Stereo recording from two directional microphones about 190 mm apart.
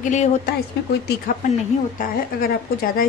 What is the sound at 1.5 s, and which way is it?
A woman's voice, 50° left (ahead or behind).